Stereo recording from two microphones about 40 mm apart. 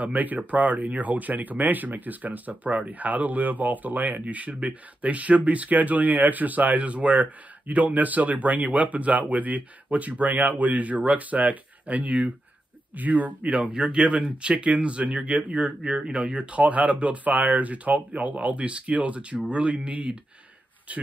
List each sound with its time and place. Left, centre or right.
0.0 s speech: right
13.8 s speech: right
14.5 s speech: right
15.8 s speech: centre; by 21.0 s right